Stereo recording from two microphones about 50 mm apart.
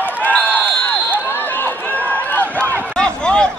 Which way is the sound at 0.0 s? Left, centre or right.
Left.